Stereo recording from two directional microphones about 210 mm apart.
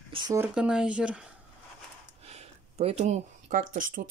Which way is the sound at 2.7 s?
30° right (ahead or behind).